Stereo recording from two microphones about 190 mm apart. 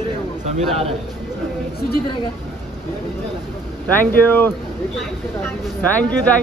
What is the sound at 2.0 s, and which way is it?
Speech, 25° left (ahead or behind).